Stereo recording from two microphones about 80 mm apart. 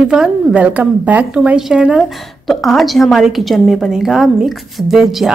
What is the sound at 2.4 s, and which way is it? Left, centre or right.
A woman's voice, centre.